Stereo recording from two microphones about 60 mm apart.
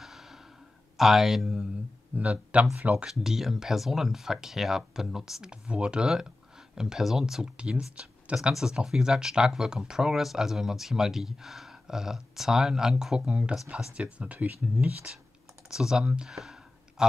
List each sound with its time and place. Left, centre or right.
0.0 s a sound: centre
0.9 s speech: centre
2.1 s speech: right
3.1 s speech: centre
14.1 s speech: right
15.7 s speech: centre